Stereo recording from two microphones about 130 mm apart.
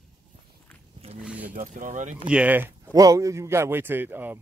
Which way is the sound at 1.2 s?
10° right (ahead or behind).